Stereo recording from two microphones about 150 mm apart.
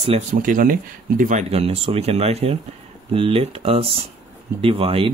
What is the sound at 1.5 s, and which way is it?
Speech, 40° right (ahead or behind).